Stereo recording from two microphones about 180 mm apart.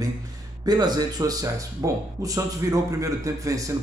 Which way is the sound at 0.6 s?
20° right (ahead or behind).